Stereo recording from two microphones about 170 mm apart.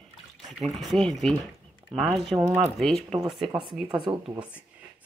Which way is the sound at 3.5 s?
30° right (ahead or behind).